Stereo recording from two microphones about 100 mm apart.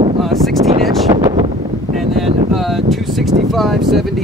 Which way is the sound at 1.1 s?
35° right (ahead or behind).